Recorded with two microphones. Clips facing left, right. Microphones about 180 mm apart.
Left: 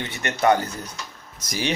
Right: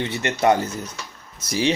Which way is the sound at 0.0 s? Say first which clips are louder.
Right 2 dB; 30° right (ahead or behind).